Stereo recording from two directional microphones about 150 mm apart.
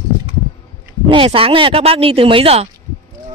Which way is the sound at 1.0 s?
35° right (ahead or behind).